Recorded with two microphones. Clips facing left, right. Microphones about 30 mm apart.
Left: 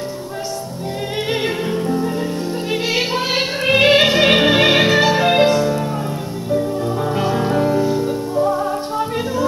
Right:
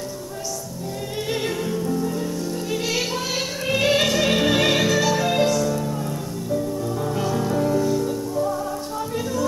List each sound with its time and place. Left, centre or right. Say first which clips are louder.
1.3 s music: left 4 dB; left